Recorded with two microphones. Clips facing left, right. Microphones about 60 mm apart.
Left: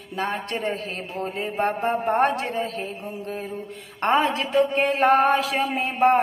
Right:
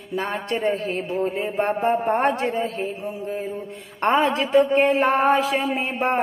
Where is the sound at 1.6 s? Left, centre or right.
Right.